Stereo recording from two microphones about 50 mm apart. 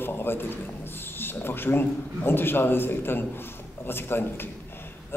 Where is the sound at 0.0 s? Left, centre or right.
Left.